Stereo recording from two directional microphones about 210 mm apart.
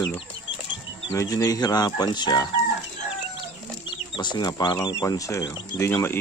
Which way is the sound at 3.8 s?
20° left (ahead or behind).